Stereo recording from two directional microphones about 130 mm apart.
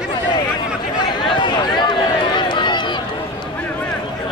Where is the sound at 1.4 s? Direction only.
35° left (ahead or behind).